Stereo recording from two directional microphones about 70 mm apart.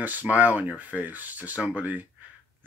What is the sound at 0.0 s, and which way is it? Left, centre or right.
Speech, right.